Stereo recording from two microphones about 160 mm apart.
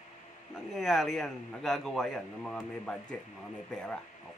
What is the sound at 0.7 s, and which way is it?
A man's voice, centre (ahead or behind).